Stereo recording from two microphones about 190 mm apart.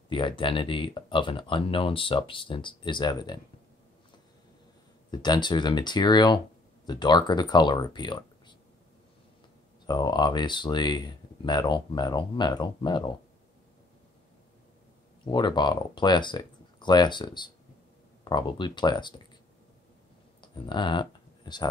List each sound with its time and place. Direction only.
0.1 s speech: 25° left (ahead or behind)
5.1 s speech: 20° left (ahead or behind)
9.8 s speech: 20° left (ahead or behind)
15.2 s speech: 25° left (ahead or behind)
20.3 s a sound: 25° left (ahead or behind)